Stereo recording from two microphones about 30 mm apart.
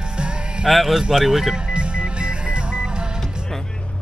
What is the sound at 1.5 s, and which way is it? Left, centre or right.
Music, right.